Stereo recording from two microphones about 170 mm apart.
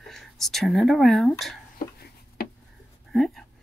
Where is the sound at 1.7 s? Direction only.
65° left (ahead or behind).